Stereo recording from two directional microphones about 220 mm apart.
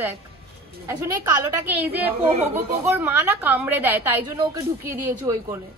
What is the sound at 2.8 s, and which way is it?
Speech, 10° right (ahead or behind).